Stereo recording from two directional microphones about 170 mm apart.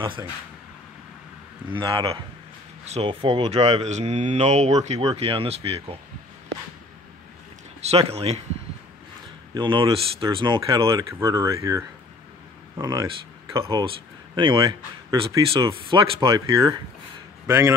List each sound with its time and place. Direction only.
0.0 s speech: 25° right (ahead or behind)
1.7 s speech: 30° right (ahead or behind)
7.8 s speech: 35° right (ahead or behind)
9.5 s speech: 25° right (ahead or behind)